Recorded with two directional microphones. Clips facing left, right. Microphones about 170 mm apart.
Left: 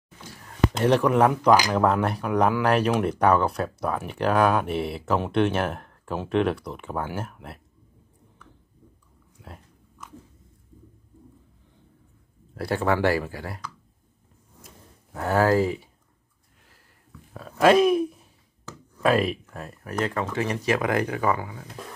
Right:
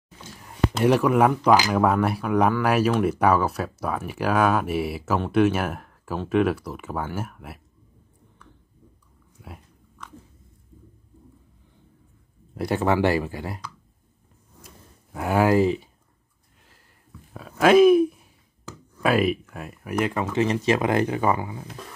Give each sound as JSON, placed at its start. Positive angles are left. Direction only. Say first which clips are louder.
{"t": 0.8, "sound": "speech", "louder": "right 1 dB", "side_deg": -5}
{"t": 12.5, "sound": "speech", "louder": "right 2 dB", "side_deg": -20}
{"t": 15.1, "sound": "speech", "louder": "right 1 dB", "side_deg": -15}
{"t": 17.3, "sound": "speech", "louder": "right 1 dB", "side_deg": -5}